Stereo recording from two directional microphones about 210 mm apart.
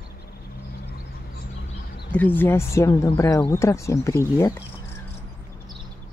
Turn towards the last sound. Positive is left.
turn(degrees=15)  # may be behind; listen again after turning